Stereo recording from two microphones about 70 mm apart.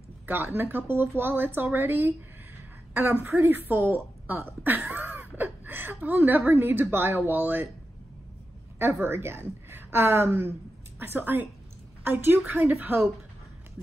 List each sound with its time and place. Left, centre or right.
0.3 s speech: right
8.7 s a woman's voice: right